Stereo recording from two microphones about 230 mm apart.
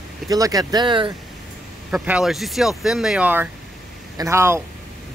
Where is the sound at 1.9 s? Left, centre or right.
Centre.